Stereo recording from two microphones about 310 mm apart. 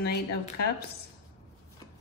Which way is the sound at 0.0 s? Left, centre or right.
Left.